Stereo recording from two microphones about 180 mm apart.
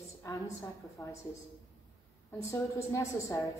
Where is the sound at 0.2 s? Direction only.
15° left (ahead or behind).